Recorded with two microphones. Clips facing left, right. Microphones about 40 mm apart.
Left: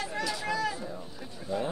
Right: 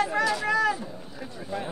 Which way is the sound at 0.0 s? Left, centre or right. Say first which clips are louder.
Right 8 dB; right.